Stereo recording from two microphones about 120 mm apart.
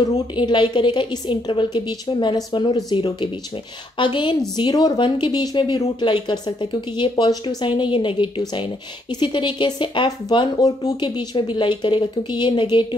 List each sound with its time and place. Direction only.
0.0 s a woman's voice: 40° left (ahead or behind)